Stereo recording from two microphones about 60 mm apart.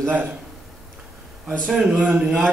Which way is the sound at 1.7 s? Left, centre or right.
Centre.